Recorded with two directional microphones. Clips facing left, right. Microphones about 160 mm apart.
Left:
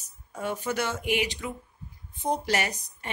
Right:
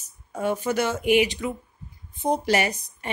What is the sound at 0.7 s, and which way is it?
Speech, 10° right (ahead or behind).